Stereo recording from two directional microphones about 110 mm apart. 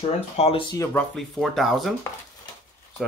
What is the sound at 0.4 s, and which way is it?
Speech, 75° left (ahead or behind).